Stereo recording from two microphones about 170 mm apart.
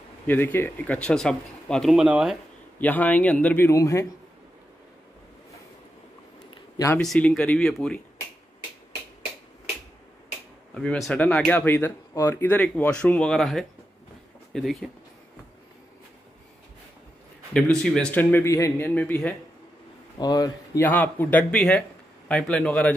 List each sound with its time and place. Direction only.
0.3 s speech: 10° left (ahead or behind); by 2.3 s 5° right (ahead or behind)
2.8 s speech: 10° left (ahead or behind)
6.9 s speech: 5° left (ahead or behind)
10.7 s speech: 5° left (ahead or behind)
17.6 s speech: 5° left (ahead or behind)
20.2 s speech: 25° left (ahead or behind)
20.8 s speech: 10° left (ahead or behind)